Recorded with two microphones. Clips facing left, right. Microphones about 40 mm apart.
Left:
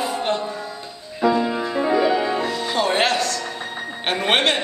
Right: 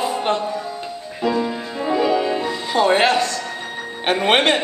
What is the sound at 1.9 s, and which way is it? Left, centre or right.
Music, centre.